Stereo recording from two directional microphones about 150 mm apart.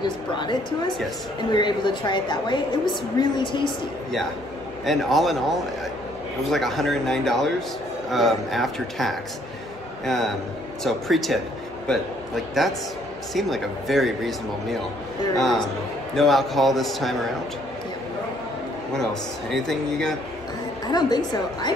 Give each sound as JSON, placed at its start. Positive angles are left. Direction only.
{"t": 0.0, "sound": "a woman's voice", "side_deg": 30}
{"t": 4.8, "sound": "speech", "side_deg": 0}
{"t": 6.5, "sound": "speech", "side_deg": 0}
{"t": 12.6, "sound": "speech", "side_deg": 0}
{"t": 19.5, "sound": "speech", "side_deg": 0}
{"t": 20.8, "sound": "a woman's voice", "side_deg": 30}